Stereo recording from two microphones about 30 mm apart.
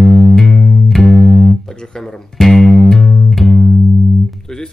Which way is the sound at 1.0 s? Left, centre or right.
Left.